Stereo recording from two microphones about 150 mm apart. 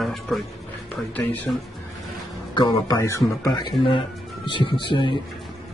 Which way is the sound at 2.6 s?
25° left (ahead or behind).